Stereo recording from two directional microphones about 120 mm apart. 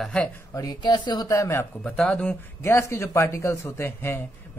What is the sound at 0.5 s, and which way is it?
Speech, 35° left (ahead or behind).